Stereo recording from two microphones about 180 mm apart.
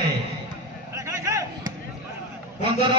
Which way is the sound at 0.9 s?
15° right (ahead or behind).